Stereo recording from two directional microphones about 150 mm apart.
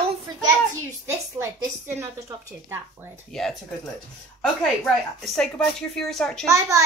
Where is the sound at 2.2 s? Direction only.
20° right (ahead or behind).